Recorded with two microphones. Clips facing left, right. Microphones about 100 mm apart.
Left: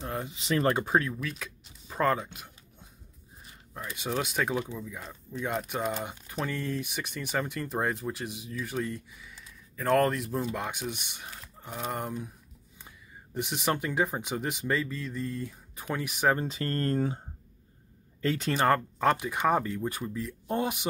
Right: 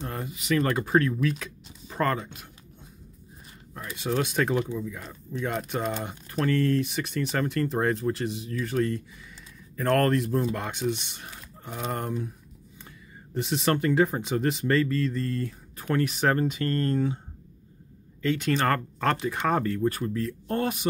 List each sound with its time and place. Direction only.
0.1 s a sound: 20° left (ahead or behind)
0.4 s speech: 30° left (ahead or behind)
0.9 s speech: 5° left (ahead or behind)
4.1 s speech: 5° left (ahead or behind)
11.2 s speech: centre (ahead or behind)
13.3 s speech: 10° left (ahead or behind)
16.4 s speech: 30° left (ahead or behind)
18.2 s speech: 35° left (ahead or behind)
18.5 s speech: 10° left (ahead or behind)